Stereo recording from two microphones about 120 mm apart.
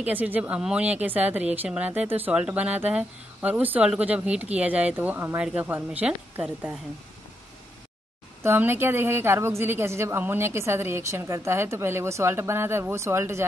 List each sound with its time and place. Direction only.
0.0 s speech: 15° right (ahead or behind)
8.4 s a woman's voice: 20° right (ahead or behind)